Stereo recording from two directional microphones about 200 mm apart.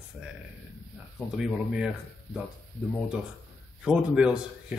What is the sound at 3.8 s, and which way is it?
Speech, 5° right (ahead or behind).